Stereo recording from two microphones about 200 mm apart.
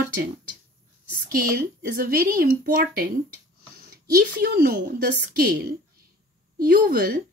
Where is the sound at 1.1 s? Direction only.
45° right (ahead or behind).